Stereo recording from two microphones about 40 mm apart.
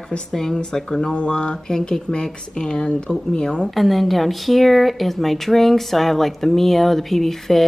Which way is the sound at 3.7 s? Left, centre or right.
Centre.